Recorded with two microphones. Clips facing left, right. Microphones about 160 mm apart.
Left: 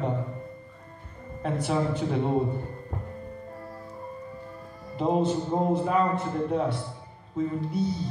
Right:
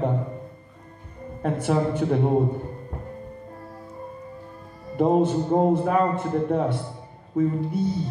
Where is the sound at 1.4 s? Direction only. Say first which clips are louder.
Right 4 dB; 55° right (ahead or behind).